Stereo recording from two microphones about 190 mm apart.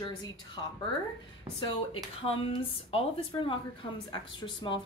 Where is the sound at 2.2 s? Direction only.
30° left (ahead or behind).